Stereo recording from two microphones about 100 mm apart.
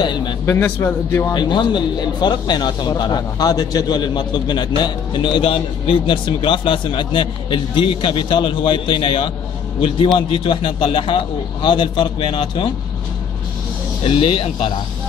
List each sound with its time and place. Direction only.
0.0 s speech: 50° left (ahead or behind)
0.5 s a man's voice: 20° left (ahead or behind)
1.3 s a man's voice: 50° left (ahead or behind)
14.0 s a man's voice: 65° left (ahead or behind)